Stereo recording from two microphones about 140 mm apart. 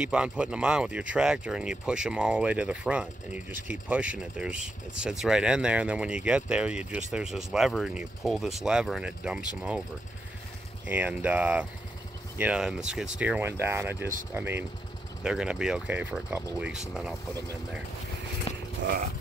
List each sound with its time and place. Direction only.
0.0 s speech: 5° right (ahead or behind)
10.9 s speech: 10° right (ahead or behind)
18.5 s speech: 45° left (ahead or behind)